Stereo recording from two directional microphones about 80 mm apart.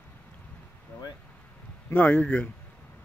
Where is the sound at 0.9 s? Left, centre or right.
Left.